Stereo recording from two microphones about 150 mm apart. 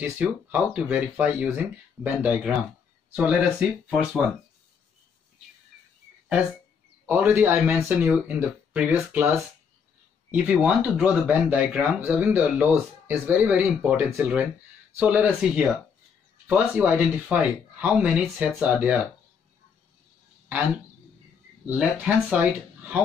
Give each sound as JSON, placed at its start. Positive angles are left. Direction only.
{"t": 0.2, "sound": "speech", "side_deg": -10}
{"t": 7.1, "sound": "speech", "side_deg": -15}
{"t": 21.6, "sound": "speech", "side_deg": -10}